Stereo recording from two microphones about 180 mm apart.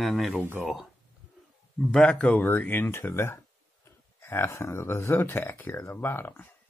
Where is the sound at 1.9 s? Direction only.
5° left (ahead or behind).